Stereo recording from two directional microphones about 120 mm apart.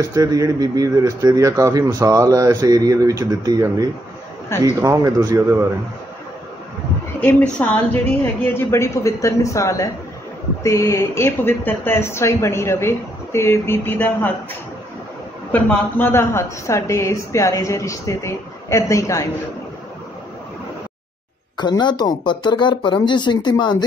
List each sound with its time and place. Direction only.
0.1 s speech: 30° right (ahead or behind)
7.2 s speech: 15° left (ahead or behind)
15.5 s speech: 15° left (ahead or behind)
21.5 s speech: 40° left (ahead or behind)